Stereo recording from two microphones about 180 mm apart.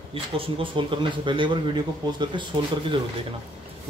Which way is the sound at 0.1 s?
30° right (ahead or behind).